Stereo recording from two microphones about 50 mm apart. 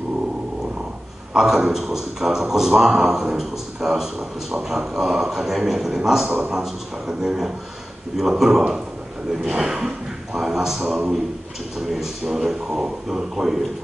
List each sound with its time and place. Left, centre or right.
1.3 s a man's voice: centre